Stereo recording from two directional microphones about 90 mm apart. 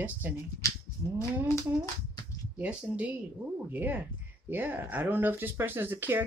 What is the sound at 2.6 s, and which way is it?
Speech, 15° right (ahead or behind).